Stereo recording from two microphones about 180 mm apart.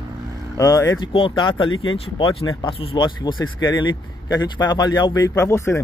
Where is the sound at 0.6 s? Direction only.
20° left (ahead or behind).